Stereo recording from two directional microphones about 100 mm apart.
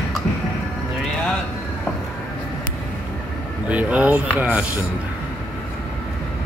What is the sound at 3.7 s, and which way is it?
Speech, 15° right (ahead or behind).